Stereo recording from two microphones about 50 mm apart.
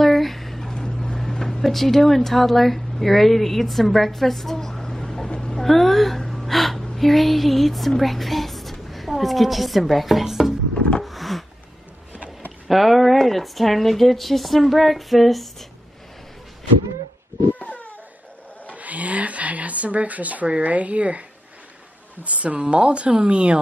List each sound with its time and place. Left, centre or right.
0.0 s a sound: centre
1.6 s speech: centre
5.6 s a woman's voice: centre
10.7 s wood: centre
11.1 s a sound: centre
12.6 s speech: centre
17.6 s crying: left
18.8 s speech: right
22.2 s speech: right